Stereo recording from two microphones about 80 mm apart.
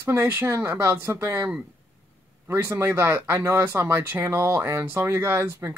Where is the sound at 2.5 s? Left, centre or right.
Right.